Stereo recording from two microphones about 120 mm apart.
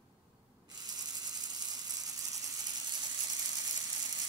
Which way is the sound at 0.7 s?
35° right (ahead or behind).